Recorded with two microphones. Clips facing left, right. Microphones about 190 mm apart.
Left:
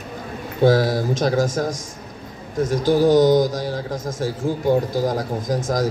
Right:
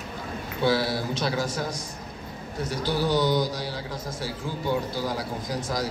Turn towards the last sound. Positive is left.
turn(degrees=45)  # may be behind; listen again after turning